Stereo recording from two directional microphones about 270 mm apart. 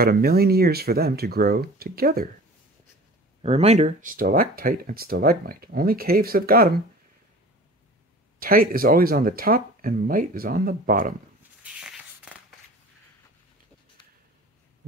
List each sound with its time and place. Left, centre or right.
0.0 s speech: right
3.4 s speech: right
8.4 s speech: right
11.6 s a sound: centre